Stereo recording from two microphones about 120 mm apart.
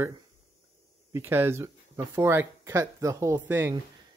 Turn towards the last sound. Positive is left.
turn(degrees=-20)  # may be behind; listen again after turning